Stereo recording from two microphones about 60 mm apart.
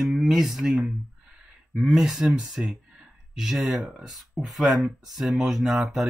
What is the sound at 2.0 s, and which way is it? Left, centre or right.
Speech, centre.